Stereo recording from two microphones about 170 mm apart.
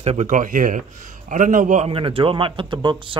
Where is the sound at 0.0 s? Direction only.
40° right (ahead or behind).